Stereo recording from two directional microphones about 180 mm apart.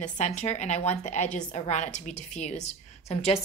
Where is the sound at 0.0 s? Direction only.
40° left (ahead or behind).